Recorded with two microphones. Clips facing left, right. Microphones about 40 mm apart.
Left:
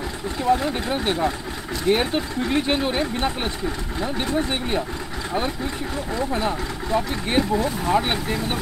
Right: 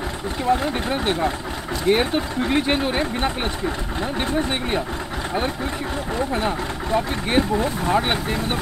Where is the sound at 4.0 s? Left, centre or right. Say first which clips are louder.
Even; right.